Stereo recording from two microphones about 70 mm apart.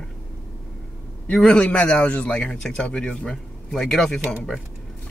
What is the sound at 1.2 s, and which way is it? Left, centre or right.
A man's voice, centre.